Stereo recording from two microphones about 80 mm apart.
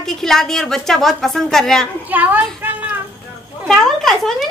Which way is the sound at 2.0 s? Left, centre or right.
Right.